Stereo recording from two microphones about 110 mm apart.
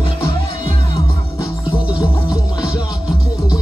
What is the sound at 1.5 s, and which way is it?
Music, 45° left (ahead or behind).